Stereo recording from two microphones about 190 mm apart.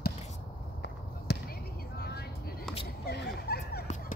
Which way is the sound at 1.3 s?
60° left (ahead or behind).